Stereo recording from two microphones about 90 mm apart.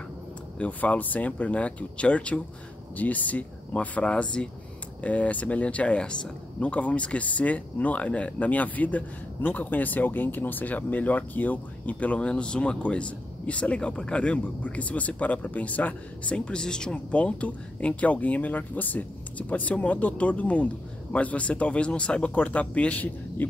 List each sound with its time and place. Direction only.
0.6 s speech: 15° left (ahead or behind)